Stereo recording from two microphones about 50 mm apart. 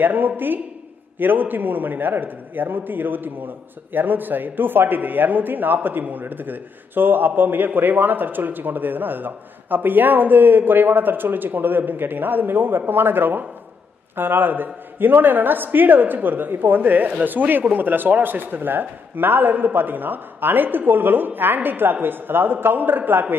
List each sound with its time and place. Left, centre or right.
0.0 s a man's voice: right